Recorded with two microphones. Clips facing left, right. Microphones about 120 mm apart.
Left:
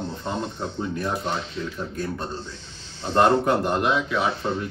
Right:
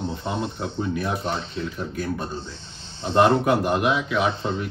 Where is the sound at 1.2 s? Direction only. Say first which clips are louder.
Even; 30° right (ahead or behind).